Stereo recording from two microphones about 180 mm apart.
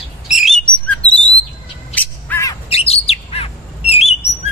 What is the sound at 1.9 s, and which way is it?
Bird, 10° left (ahead or behind).